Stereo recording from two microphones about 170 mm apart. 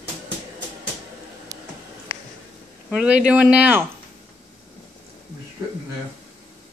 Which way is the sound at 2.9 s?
5° right (ahead or behind).